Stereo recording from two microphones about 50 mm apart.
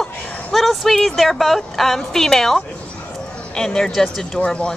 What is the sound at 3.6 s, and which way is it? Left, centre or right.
Speech, centre.